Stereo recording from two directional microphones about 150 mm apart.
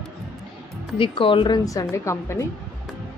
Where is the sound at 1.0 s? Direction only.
35° left (ahead or behind); by 2.5 s 20° left (ahead or behind).